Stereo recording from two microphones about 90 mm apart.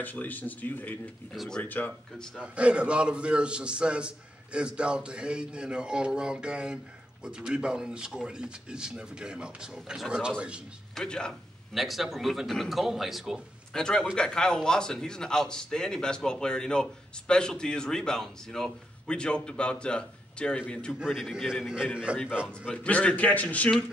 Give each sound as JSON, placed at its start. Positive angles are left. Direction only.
{"t": 0.0, "sound": "speech", "side_deg": 20}
{"t": 1.3, "sound": "speech", "side_deg": 0}
{"t": 1.6, "sound": "speech", "side_deg": 20}
{"t": 2.3, "sound": "a man's voice", "side_deg": -15}
{"t": 11.0, "sound": "a man's voice", "side_deg": 10}
{"t": 13.7, "sound": "a man's voice", "side_deg": 5}
{"t": 21.0, "sound": "a man's voice", "side_deg": 0}
{"t": 22.7, "sound": "a man's voice", "side_deg": 15}